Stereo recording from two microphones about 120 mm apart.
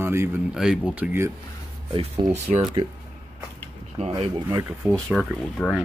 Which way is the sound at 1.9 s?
50° right (ahead or behind).